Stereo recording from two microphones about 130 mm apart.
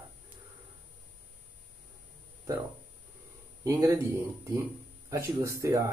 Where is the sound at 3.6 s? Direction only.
20° right (ahead or behind).